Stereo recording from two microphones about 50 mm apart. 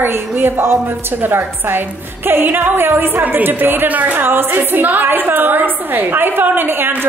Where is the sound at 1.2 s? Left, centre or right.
Right.